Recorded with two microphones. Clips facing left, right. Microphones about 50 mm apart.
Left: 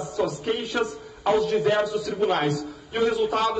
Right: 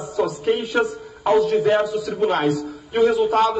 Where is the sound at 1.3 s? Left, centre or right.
Right.